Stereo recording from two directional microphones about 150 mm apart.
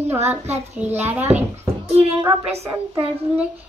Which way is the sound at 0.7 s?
10° right (ahead or behind).